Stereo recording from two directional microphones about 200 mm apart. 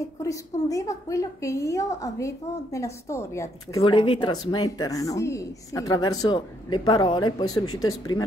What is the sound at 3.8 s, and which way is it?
Speech, 25° left (ahead or behind).